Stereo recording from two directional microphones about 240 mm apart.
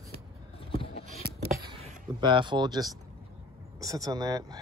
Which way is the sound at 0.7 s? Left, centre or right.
Left.